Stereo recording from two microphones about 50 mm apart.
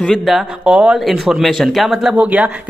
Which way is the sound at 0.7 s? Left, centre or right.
Centre.